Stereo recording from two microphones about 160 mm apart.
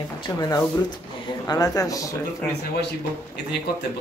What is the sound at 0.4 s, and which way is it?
Speech, 20° left (ahead or behind).